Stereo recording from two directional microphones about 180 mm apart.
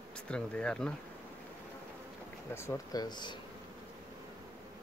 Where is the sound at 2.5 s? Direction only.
15° left (ahead or behind).